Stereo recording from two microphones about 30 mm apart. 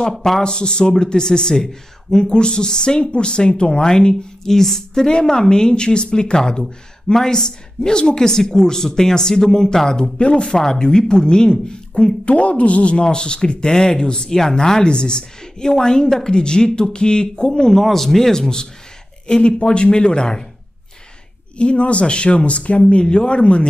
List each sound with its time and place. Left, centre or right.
0.1 s speech: centre
0.4 s speech: left
2.2 s speech: left
10.1 s speech: left
10.6 s speech: left
11.9 s speech: left
14.6 s speech: centre
14.9 s speech: left
17.7 s speech: centre
19.2 s speech: left
21.5 s speech: left
23.0 s speech: left